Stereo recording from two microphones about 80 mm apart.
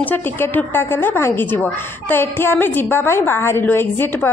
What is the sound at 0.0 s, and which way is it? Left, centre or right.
A woman's voice, left.